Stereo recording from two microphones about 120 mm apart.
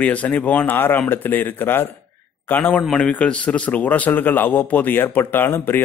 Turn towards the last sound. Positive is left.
turn(degrees=15)  # may be behind; listen again after turning